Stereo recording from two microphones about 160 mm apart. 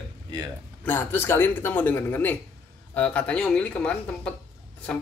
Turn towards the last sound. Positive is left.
turn(degrees=10)  # may be behind; listen again after turning